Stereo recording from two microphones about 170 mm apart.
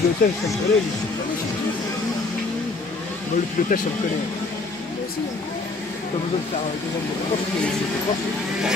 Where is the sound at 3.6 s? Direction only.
55° left (ahead or behind).